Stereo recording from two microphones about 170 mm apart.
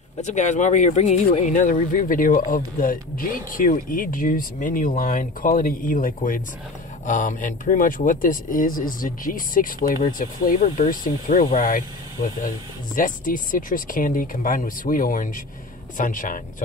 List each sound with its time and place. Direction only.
0.2 s speech: 45° left (ahead or behind)